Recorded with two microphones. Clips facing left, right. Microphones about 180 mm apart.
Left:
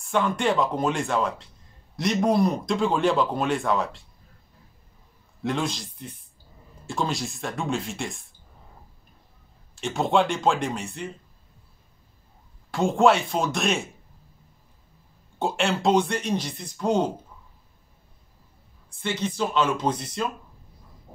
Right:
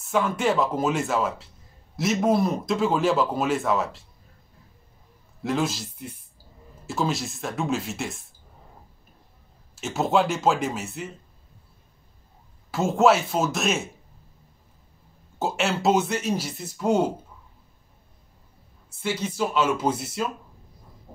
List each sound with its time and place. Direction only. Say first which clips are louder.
0.0 s speech: even; 5° right (ahead or behind)
5.4 s speech: right 2 dB; 5° right (ahead or behind)
9.8 s speech: even; 5° right (ahead or behind)
12.7 s speech: even; 5° right (ahead or behind)
15.3 s speech: left 1 dB; centre (ahead or behind)
18.9 s speech: even; 5° right (ahead or behind)